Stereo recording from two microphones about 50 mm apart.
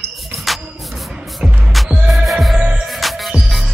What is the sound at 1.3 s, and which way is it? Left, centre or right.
Music, centre.